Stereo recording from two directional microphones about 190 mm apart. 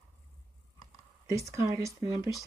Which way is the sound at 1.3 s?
15° right (ahead or behind).